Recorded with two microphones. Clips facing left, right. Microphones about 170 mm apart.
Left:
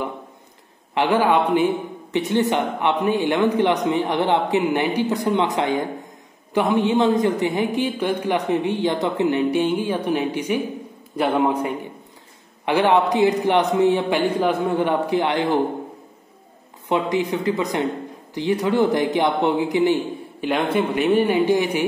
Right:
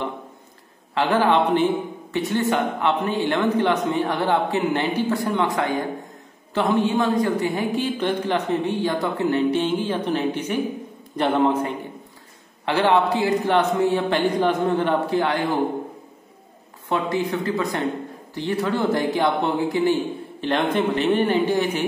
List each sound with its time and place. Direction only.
0.9 s a man's voice: 15° left (ahead or behind)
16.9 s a man's voice: 15° left (ahead or behind)